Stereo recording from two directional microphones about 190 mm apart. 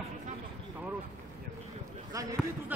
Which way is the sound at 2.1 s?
20° right (ahead or behind).